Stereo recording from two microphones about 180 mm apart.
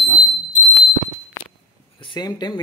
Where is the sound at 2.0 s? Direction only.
25° left (ahead or behind).